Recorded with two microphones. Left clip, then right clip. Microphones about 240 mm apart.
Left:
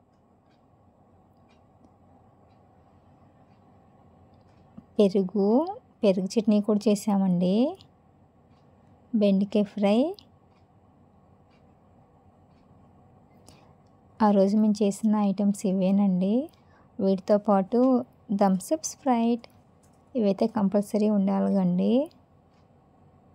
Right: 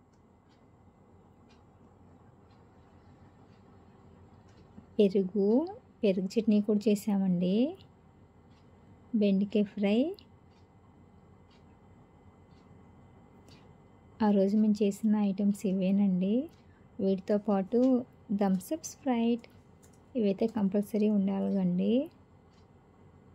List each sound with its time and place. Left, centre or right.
4.9 s a woman's voice: left
9.2 s a woman's voice: left
14.1 s a woman's voice: left